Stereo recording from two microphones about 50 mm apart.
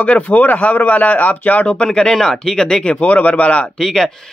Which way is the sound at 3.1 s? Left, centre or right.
Left.